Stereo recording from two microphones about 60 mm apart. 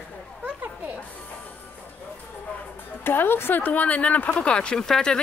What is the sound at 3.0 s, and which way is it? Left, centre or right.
Speech, left.